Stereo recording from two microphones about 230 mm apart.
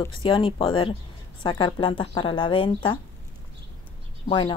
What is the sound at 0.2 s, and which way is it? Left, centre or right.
Speech, left.